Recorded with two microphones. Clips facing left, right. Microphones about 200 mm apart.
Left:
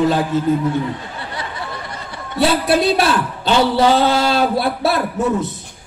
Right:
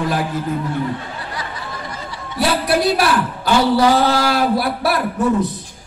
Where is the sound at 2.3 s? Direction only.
25° left (ahead or behind).